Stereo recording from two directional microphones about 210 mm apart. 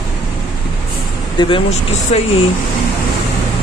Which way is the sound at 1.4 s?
25° left (ahead or behind).